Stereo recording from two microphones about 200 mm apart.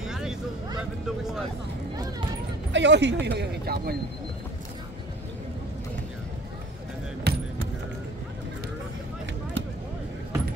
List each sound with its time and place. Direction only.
0.0 s vehicle: 5° right (ahead or behind)
2.7 s speech: 60° right (ahead or behind)
7.3 s a sound: 55° right (ahead or behind)